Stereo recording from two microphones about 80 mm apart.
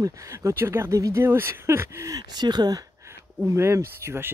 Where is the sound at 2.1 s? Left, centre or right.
Right.